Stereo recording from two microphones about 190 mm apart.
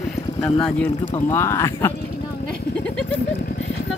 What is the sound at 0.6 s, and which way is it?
Speech, 5° left (ahead or behind).